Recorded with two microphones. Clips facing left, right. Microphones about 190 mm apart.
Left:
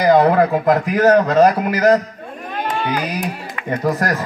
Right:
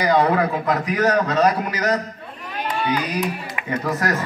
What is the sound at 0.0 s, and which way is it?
A man's voice, 45° left (ahead or behind).